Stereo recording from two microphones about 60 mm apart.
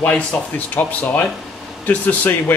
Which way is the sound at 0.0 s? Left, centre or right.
Centre.